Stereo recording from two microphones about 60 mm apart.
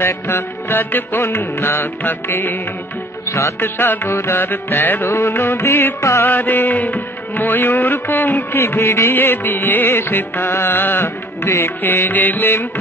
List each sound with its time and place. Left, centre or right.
0.0 s music: left
3.3 s music: left
3.6 s music: left
5.0 s music: left
5.9 s music: left
6.2 s music: left
8.5 s music: left
9.1 s music: left